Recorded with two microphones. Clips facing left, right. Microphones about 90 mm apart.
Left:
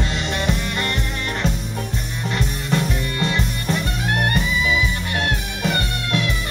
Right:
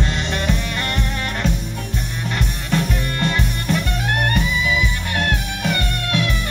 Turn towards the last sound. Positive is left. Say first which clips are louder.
# right 1 dB
turn(degrees=-50)  # may be behind; listen again after turning